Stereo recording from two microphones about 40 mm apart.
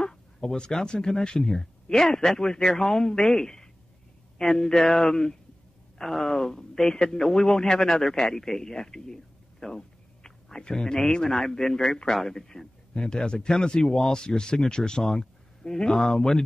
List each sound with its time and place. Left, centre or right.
0.0 s speech: centre